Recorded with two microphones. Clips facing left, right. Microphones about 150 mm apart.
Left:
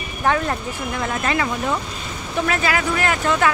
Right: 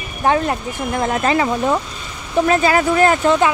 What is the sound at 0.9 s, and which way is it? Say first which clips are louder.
Speech: right 6 dB; 35° right (ahead or behind).